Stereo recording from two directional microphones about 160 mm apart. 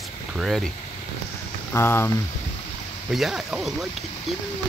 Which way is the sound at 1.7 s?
15° left (ahead or behind).